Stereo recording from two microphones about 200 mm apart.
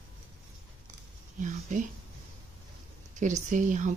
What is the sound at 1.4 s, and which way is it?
Speech, 40° right (ahead or behind).